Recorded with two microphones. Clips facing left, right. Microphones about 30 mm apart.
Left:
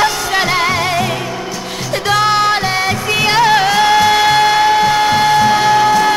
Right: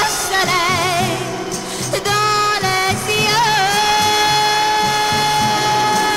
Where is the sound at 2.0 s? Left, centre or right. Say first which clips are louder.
Left 4 dB; centre.